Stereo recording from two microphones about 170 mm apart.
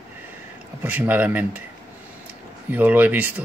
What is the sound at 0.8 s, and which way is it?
Speech, 10° right (ahead or behind).